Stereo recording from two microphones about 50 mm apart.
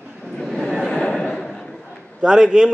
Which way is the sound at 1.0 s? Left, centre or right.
Centre.